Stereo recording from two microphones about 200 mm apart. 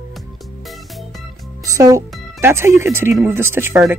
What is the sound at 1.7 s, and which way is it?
Speech, 15° right (ahead or behind).